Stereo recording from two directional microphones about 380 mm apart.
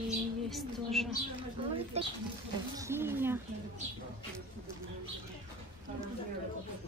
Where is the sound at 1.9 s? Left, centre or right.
Centre.